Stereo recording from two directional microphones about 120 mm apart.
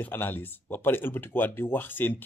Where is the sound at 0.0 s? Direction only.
15° left (ahead or behind).